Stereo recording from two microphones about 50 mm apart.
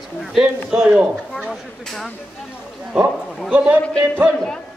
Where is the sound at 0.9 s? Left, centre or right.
Centre.